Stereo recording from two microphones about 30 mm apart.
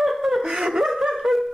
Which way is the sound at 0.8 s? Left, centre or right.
Centre.